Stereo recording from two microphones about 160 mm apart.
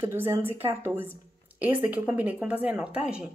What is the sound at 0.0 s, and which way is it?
Speech, 15° right (ahead or behind).